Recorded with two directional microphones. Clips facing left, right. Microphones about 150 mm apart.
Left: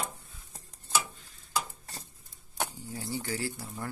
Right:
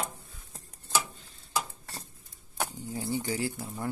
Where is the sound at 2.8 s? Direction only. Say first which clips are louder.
Right 4 dB; 20° right (ahead or behind).